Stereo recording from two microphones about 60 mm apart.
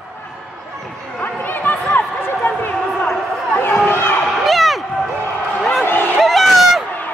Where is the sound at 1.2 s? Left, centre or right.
Left.